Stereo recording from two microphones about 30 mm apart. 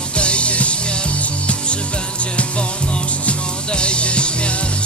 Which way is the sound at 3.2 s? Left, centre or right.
Left.